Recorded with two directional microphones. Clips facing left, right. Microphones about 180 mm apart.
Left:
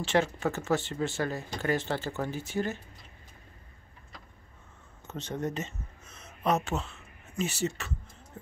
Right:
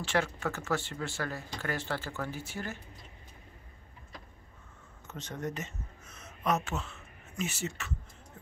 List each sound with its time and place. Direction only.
0.0 s speech: 25° left (ahead or behind)
5.0 s a sound: 25° left (ahead or behind)
7.3 s speech: 35° left (ahead or behind)